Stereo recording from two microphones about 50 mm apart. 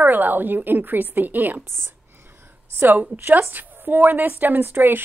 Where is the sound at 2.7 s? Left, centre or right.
Right.